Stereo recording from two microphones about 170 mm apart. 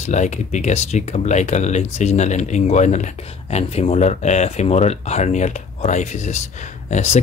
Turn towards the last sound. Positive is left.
turn(degrees=40)  # may be behind; listen again after turning